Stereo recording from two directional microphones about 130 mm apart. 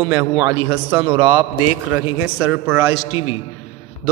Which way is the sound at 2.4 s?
15° right (ahead or behind).